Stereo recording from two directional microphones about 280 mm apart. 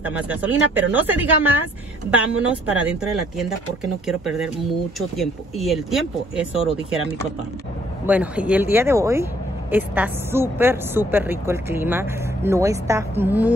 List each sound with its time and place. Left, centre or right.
0.0 s speech: centre
8.1 s speech: centre